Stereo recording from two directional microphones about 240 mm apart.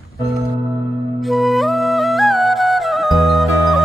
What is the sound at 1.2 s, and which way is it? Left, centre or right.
Music, centre.